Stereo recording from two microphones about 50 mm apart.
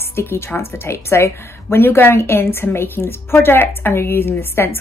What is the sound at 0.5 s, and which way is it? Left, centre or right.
A woman's voice, left.